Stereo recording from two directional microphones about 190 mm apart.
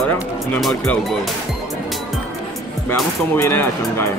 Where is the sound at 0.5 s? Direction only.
5° left (ahead or behind).